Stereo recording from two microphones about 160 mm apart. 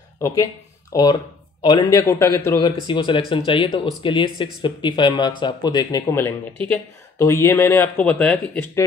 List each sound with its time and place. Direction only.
0.2 s speech: 20° left (ahead or behind)
2.6 s speech: 30° left (ahead or behind); by 8.8 s 10° left (ahead or behind)